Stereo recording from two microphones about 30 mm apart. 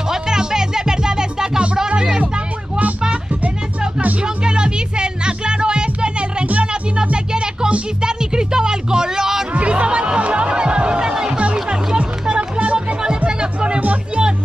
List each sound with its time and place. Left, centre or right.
0.1 s music: right
4.2 s music: right
8.0 s music: right
9.5 s music: right
12.0 s music: right
12.7 s music: right